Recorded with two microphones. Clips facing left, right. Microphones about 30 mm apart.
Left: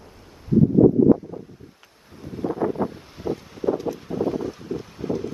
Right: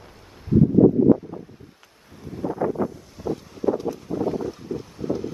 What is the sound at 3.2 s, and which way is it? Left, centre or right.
Wind, centre.